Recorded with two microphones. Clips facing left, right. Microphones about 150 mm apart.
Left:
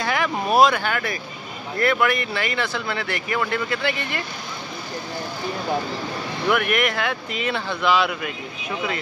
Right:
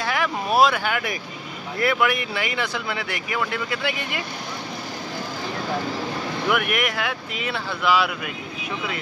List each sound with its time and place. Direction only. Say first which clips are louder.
0.0 s a sound: left 2 dB; 5° right (ahead or behind)
1.8 s speech: left 1 dB; 5° right (ahead or behind)
6.5 s speech: left 3 dB; 10° right (ahead or behind)